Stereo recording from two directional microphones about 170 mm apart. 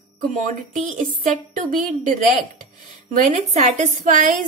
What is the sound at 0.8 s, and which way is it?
Speech, 50° right (ahead or behind).